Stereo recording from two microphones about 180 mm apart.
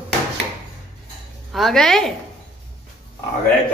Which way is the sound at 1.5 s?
Centre (ahead or behind).